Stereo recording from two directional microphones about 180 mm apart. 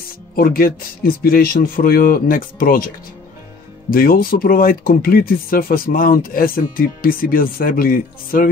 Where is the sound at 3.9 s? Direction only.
55° left (ahead or behind).